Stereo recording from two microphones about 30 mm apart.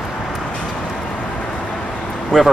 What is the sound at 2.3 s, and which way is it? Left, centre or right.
Speech, centre.